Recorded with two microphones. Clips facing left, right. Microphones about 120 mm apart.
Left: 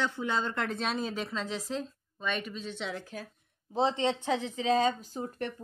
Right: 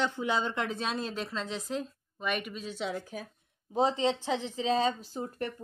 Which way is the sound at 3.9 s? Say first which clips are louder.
Left 3 dB; 30° right (ahead or behind).